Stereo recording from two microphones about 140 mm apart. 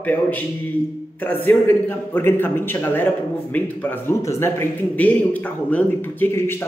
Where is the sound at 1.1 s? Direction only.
15° left (ahead or behind).